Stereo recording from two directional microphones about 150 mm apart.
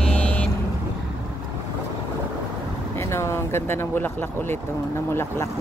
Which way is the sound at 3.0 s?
20° left (ahead or behind).